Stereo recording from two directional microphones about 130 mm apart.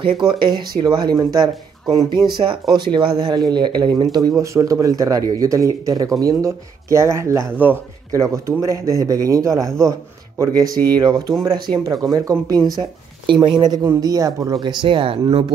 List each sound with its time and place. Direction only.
0.3 s speech: 35° right (ahead or behind)